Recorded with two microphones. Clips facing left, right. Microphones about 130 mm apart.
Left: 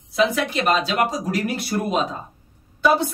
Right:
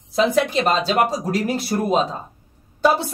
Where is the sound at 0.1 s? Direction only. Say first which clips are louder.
Right 3 dB; 35° right (ahead or behind).